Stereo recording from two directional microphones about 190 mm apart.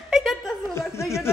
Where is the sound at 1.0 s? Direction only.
15° left (ahead or behind).